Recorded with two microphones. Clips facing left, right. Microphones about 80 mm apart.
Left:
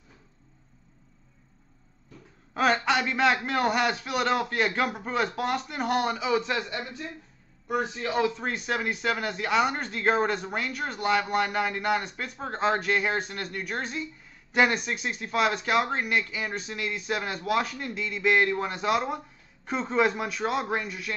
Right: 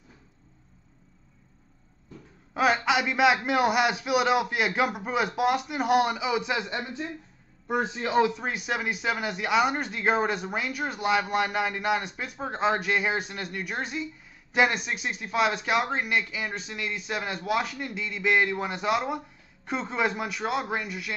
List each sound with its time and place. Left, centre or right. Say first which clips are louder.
2.5 s a man's voice: even; centre; by 8.4 s right
8.4 s speech: left 1 dB; centre